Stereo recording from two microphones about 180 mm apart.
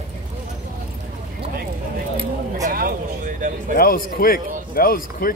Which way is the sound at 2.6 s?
50° right (ahead or behind).